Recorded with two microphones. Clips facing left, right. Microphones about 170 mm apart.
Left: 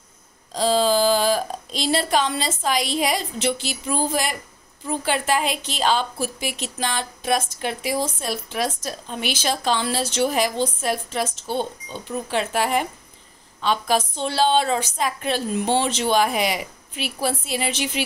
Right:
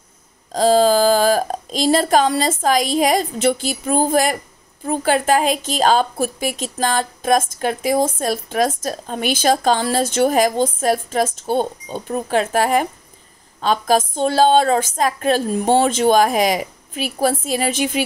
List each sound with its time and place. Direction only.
0.5 s a woman's voice: 45° right (ahead or behind)